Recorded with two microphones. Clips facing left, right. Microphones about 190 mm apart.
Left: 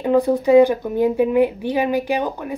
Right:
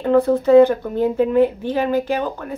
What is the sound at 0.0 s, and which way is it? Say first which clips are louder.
Speech: right 1 dB; 15° left (ahead or behind).